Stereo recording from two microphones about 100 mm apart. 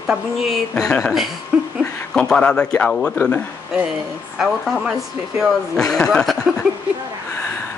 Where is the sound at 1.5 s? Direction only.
10° right (ahead or behind).